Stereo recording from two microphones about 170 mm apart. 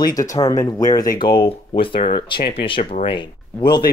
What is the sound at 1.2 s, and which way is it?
Speech, 30° left (ahead or behind).